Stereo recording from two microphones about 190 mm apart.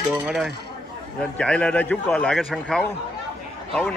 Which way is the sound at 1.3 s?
5° left (ahead or behind).